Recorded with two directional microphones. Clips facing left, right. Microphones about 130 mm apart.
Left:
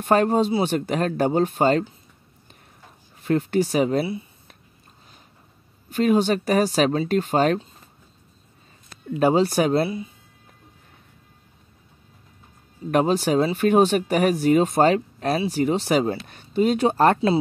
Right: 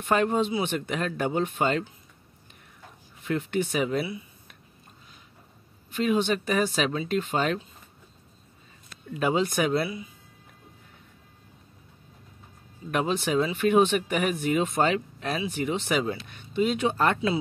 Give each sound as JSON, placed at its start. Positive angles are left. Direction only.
{"t": 0.0, "sound": "speech", "side_deg": 40}
{"t": 3.3, "sound": "speech", "side_deg": 40}
{"t": 5.9, "sound": "speech", "side_deg": 45}
{"t": 9.2, "sound": "speech", "side_deg": 35}
{"t": 12.9, "sound": "speech", "side_deg": 40}